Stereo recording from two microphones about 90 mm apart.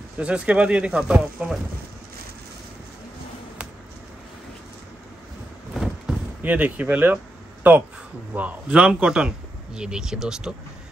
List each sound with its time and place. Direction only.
0.2 s speech: 15° right (ahead or behind)
6.1 s basketball bounce: 10° right (ahead or behind)
6.4 s speech: 15° right (ahead or behind)